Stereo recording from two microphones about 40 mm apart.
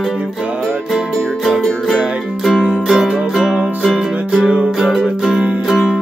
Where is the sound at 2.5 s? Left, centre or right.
Centre.